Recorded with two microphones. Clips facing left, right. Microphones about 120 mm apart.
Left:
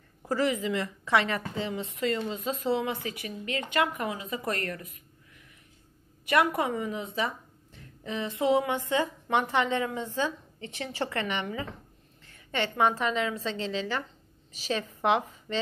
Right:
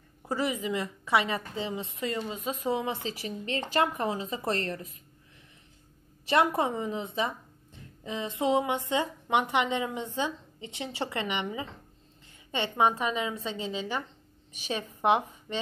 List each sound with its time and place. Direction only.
0.3 s a woman's voice: 20° right (ahead or behind)
6.2 s a woman's voice: 25° right (ahead or behind)